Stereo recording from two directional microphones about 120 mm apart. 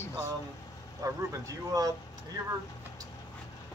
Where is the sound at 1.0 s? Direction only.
25° right (ahead or behind).